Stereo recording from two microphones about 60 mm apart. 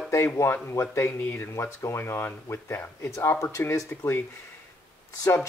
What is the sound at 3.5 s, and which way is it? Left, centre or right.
Speech, left.